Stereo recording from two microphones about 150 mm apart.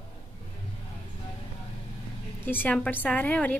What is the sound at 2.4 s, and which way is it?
Speech, 15° left (ahead or behind).